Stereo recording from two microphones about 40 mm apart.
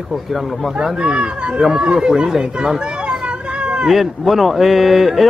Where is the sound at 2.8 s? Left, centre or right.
Right.